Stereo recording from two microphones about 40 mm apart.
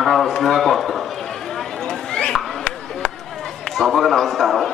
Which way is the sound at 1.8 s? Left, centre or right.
Left.